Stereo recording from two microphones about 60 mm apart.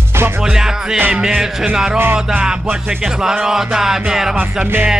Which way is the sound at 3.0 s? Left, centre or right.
Centre.